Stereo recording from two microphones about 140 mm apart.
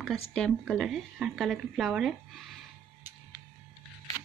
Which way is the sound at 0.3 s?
5° left (ahead or behind).